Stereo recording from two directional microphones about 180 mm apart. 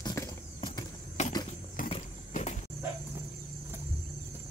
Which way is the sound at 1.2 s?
40° left (ahead or behind).